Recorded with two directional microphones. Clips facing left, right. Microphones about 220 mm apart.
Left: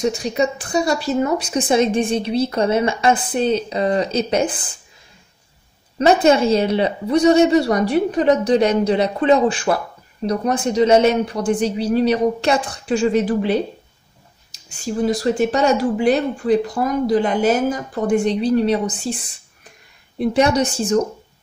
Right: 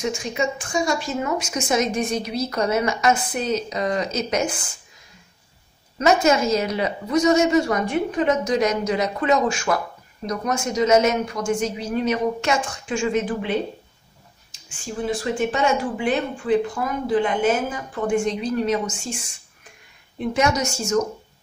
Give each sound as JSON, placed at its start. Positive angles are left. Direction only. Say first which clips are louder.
{"t": 0.0, "sound": "speech", "louder": "left 5 dB", "side_deg": 35}
{"t": 5.9, "sound": "speech", "louder": "left 4 dB", "side_deg": 30}